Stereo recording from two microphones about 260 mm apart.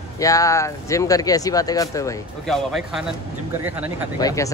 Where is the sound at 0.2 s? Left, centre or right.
Centre.